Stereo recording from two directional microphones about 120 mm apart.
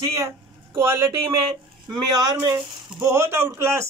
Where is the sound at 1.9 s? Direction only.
35° right (ahead or behind).